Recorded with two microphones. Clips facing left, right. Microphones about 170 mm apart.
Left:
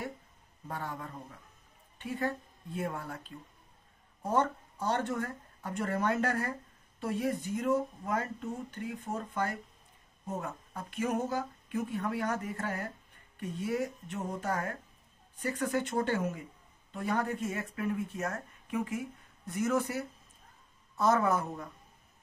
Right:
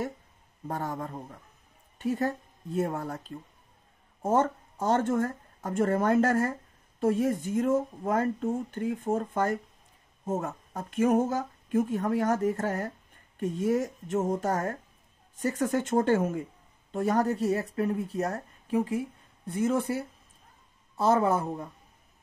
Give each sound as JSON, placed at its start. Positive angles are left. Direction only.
{"t": 0.7, "sound": "a woman's voice", "side_deg": -45}